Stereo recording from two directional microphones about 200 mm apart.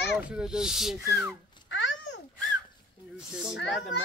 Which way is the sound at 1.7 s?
65° left (ahead or behind).